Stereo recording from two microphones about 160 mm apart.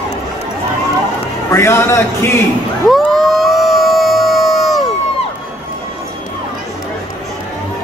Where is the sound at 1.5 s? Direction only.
15° left (ahead or behind).